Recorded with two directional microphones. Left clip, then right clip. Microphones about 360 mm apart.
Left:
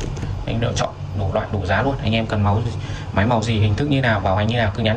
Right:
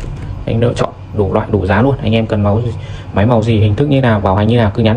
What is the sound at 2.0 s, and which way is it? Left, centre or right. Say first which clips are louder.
Speech: right 7 dB; centre.